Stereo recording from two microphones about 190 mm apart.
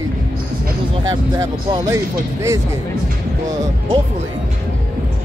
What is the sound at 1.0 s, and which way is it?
Speech, 20° right (ahead or behind).